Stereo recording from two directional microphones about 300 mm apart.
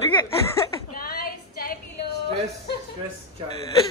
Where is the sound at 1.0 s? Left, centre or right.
Left.